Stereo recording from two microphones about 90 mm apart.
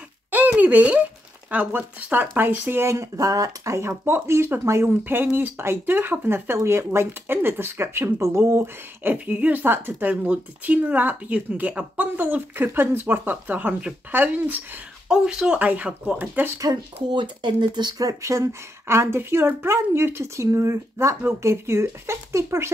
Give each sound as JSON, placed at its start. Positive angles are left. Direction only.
{"t": 0.3, "sound": "a sound", "side_deg": -20}
{"t": 1.5, "sound": "a woman's voice", "side_deg": -15}
{"t": 9.1, "sound": "a woman's voice", "side_deg": -15}
{"t": 15.0, "sound": "speech", "side_deg": -10}
{"t": 17.1, "sound": "speech", "side_deg": -60}